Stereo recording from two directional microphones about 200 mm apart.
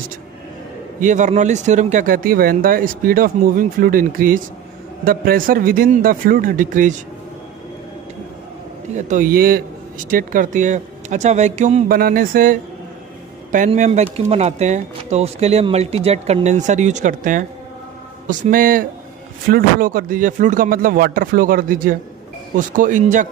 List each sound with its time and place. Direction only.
0.9 s speech: 40° right (ahead or behind)
8.9 s a man's voice: 40° right (ahead or behind)
13.7 s a man's voice: 35° right (ahead or behind)